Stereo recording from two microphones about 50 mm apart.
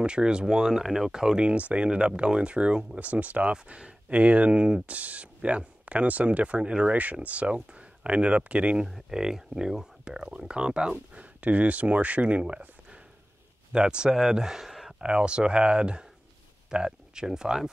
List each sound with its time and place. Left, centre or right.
0.0 s speech: centre
3.0 s speech: right
4.8 s speech: right
8.8 s speech: centre